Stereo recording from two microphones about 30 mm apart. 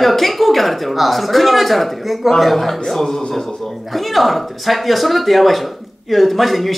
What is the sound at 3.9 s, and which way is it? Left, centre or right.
Speech, centre.